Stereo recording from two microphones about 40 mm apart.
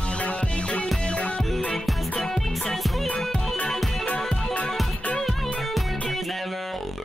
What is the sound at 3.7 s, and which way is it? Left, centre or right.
Music, centre.